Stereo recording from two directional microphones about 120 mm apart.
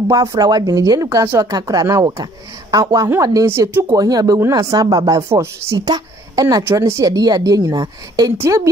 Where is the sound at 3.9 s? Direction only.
35° right (ahead or behind).